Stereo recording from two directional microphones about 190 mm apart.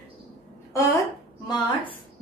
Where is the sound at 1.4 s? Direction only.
20° left (ahead or behind).